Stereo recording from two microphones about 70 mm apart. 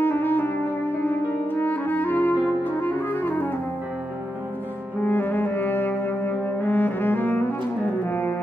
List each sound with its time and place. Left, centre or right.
0.0 s clarinet: left
2.6 s music: left
5.0 s music: left